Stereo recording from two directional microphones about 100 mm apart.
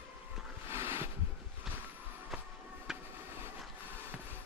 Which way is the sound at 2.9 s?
5° right (ahead or behind).